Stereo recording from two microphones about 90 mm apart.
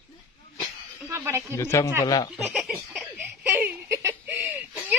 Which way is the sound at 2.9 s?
20° right (ahead or behind).